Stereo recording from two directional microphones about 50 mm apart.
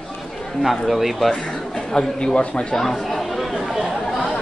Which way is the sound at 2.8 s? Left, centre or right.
Centre.